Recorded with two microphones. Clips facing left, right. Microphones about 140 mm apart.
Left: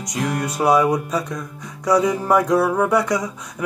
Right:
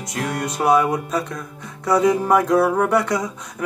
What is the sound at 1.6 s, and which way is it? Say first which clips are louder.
Music: left 2 dB; 10° left (ahead or behind).